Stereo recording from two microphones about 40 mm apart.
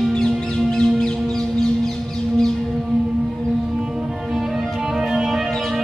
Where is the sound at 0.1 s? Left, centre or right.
Centre.